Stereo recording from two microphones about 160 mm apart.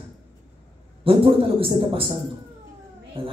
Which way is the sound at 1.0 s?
35° right (ahead or behind).